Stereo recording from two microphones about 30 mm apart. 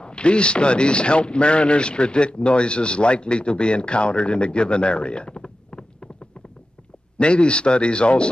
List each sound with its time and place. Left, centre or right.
0.0 s a man's voice: left
7.2 s a man's voice: left